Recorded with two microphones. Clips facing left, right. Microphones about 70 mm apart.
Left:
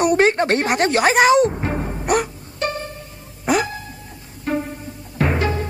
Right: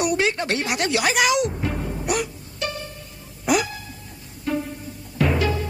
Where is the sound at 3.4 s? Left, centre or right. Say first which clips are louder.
Left 2 dB; left.